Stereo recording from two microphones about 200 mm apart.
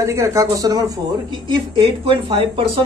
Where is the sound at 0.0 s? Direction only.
15° right (ahead or behind).